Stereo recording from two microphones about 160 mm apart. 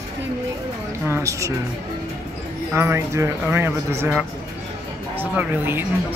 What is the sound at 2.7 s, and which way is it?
Speech, 15° right (ahead or behind).